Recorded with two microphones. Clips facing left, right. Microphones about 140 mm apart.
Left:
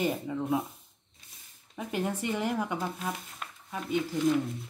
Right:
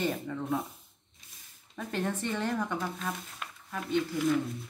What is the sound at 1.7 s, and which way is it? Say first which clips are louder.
Speech: left 1 dB; 10° left (ahead or behind).